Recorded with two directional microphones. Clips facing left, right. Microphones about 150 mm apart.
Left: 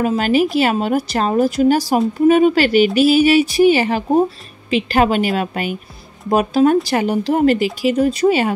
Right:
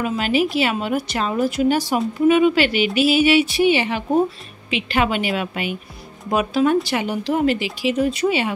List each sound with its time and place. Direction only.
0.0 s speech: 45° left (ahead or behind)